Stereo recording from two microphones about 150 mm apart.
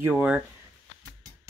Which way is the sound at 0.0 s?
10° right (ahead or behind).